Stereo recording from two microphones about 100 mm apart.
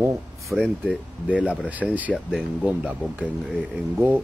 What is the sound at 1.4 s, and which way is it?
Speech, 15° right (ahead or behind).